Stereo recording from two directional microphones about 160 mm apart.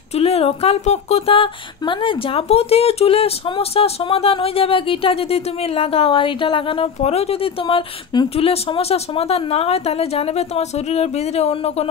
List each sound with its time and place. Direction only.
0.1 s speech: 40° left (ahead or behind)